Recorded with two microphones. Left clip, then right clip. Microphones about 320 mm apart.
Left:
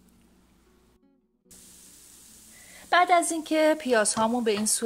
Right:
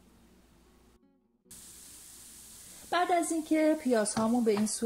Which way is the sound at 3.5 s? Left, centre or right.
Left.